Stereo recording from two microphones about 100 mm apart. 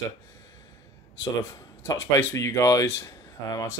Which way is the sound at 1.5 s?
30° left (ahead or behind).